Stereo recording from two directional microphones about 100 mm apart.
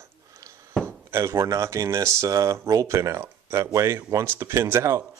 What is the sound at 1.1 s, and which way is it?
Speech, 25° right (ahead or behind).